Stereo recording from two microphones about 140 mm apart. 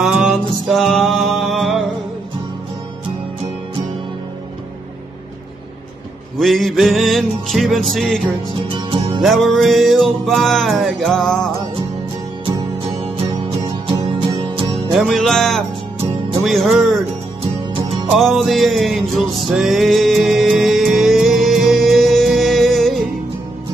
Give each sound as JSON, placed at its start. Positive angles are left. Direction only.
{"t": 0.0, "sound": "mantra", "side_deg": -5}
{"t": 6.3, "sound": "music", "side_deg": 0}
{"t": 8.7, "sound": "music", "side_deg": -35}
{"t": 9.2, "sound": "music", "side_deg": 0}
{"t": 15.0, "sound": "music", "side_deg": 0}
{"t": 18.1, "sound": "music", "side_deg": 0}